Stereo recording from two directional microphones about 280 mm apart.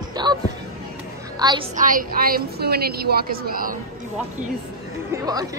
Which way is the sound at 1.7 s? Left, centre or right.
Right.